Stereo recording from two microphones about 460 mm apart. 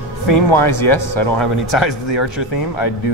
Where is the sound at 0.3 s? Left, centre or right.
Left.